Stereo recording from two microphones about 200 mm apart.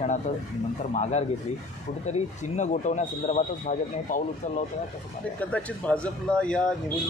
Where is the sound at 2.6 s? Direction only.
35° left (ahead or behind).